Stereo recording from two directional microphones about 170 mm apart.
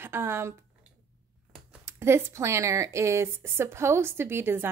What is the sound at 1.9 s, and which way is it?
Speech, 15° right (ahead or behind).